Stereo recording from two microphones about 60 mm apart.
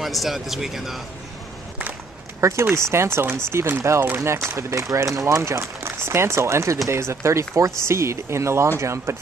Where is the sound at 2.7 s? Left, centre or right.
Right.